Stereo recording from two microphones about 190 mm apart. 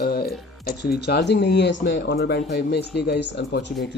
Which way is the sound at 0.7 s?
55° left (ahead or behind).